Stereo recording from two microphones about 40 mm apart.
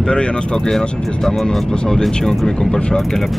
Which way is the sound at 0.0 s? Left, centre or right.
Left.